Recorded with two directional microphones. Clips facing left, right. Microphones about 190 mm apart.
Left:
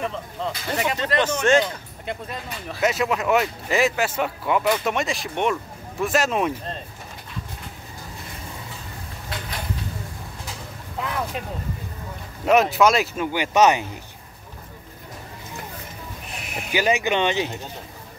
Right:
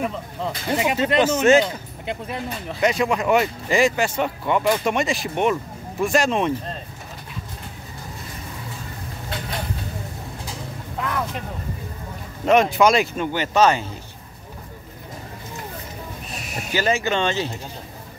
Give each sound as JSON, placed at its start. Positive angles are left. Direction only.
{"t": 0.0, "sound": "speech", "side_deg": -10}
{"t": 2.8, "sound": "speech", "side_deg": 5}
{"t": 12.4, "sound": "speech", "side_deg": 5}
{"t": 16.5, "sound": "speech", "side_deg": 15}